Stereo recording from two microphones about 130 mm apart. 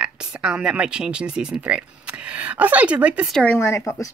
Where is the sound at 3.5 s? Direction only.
20° left (ahead or behind).